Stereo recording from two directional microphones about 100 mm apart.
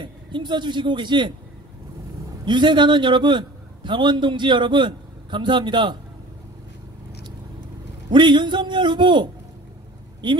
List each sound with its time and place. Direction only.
0.0 s speech: 50° right (ahead or behind)
2.4 s a man's voice: 50° right (ahead or behind)
8.1 s a man's voice: 50° right (ahead or behind)